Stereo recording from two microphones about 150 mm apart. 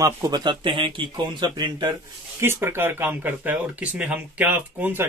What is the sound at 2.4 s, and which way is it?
Speech, 15° right (ahead or behind).